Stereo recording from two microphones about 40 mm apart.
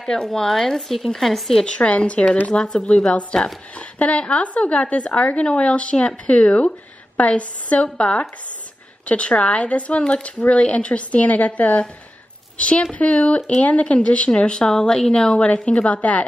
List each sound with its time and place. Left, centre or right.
0.0 s speech: centre
1.8 s speech: left
2.5 s speech: centre
3.1 s a woman's voice: left